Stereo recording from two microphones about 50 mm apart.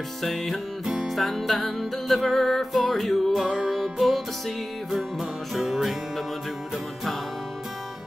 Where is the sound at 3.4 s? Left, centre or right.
Centre.